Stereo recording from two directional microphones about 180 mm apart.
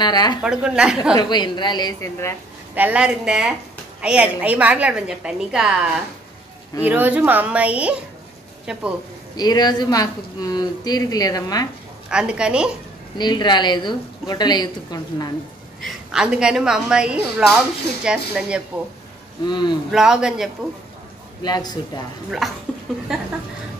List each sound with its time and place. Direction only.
0.0 s speech: 25° left (ahead or behind)
0.4 s a woman's voice: 5° right (ahead or behind)
1.1 s speech: 25° left (ahead or behind)
2.7 s a woman's voice: 10° right (ahead or behind)
9.4 s speech: 20° left (ahead or behind)
12.1 s a woman's voice: 5° right (ahead or behind)
13.2 s speech: 25° left (ahead or behind)
15.8 s a woman's voice: 5° right (ahead or behind)
19.4 s speech: 25° left (ahead or behind)
19.9 s a woman's voice: 5° right (ahead or behind)
21.4 s speech: 20° left (ahead or behind)
22.4 s a woman's voice: centre (ahead or behind)